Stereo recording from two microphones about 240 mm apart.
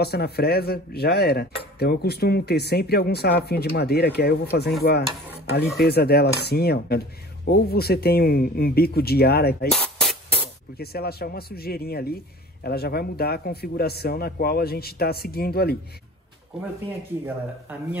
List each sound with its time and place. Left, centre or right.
0.0 s a man's voice: left
5.8 s a man's voice: left
9.7 s spray: centre
10.8 s a man's voice: left
17.7 s a man's voice: centre